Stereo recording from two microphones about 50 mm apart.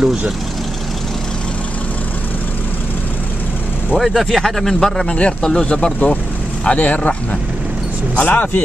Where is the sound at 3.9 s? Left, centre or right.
Centre.